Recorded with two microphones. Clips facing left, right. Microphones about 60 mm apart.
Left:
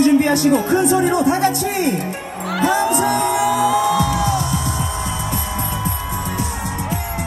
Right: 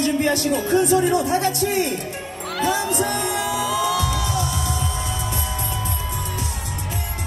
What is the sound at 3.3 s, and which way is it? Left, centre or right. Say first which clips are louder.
Music: left 7 dB; left.